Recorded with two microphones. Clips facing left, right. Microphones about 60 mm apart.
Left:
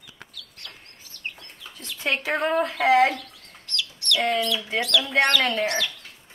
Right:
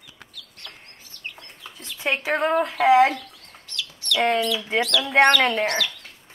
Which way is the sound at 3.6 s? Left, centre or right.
Centre.